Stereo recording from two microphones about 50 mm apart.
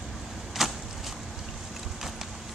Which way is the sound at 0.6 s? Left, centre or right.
Centre.